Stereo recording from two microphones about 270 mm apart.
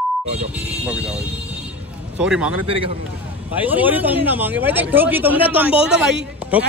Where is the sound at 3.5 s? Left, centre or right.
Centre.